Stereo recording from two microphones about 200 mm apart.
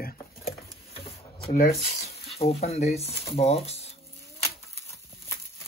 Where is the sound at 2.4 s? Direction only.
30° left (ahead or behind).